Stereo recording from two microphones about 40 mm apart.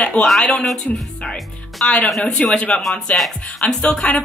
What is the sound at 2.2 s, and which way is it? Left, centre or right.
Speech, left.